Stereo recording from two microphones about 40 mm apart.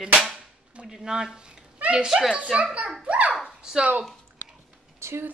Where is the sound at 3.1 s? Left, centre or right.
Right.